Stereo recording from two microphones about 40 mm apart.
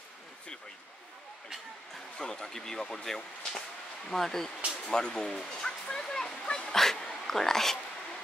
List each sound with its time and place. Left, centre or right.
2.1 s speech: left
6.7 s speech: centre